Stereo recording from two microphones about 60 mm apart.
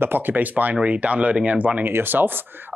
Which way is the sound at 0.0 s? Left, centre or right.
Right.